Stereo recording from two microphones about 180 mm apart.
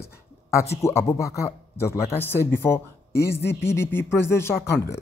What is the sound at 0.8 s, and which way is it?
Speech, 15° left (ahead or behind).